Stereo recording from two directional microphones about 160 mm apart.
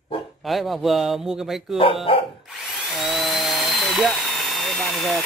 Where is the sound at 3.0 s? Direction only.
Centre (ahead or behind).